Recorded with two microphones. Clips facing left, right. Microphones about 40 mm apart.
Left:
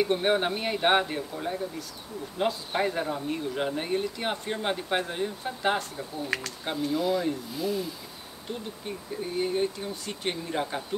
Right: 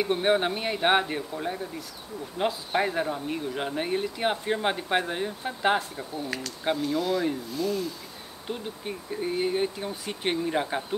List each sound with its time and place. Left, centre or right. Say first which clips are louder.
0.0 s speech: right 1 dB; centre
7.0 s speech: even; centre
8.5 s speech: right 2 dB; right